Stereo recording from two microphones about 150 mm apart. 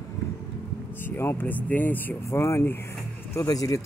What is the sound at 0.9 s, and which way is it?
Speech, 15° left (ahead or behind).